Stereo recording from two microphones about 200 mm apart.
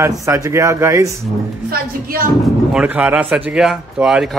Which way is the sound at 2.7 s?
5° right (ahead or behind).